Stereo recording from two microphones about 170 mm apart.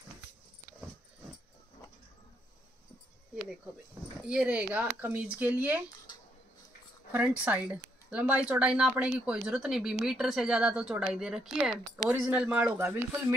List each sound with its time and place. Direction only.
4.3 s speech: 5° right (ahead or behind)
7.1 s speech: 10° right (ahead or behind)
12.7 s speech: 15° right (ahead or behind)